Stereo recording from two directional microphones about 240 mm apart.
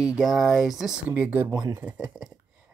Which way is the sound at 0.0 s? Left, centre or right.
Centre.